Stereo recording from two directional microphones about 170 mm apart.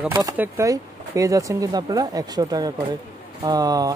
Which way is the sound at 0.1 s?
20° right (ahead or behind).